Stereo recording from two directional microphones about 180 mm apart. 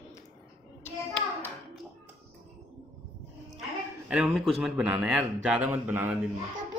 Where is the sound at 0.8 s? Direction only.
10° left (ahead or behind).